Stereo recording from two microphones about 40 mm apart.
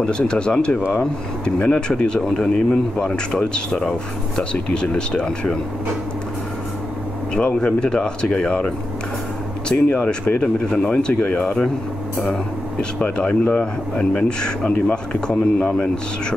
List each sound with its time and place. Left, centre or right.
0.0 s speech: left
2.2 s speech: centre
7.3 s speech: left
9.7 s speech: left
10.4 s speech: left
13.0 s speech: left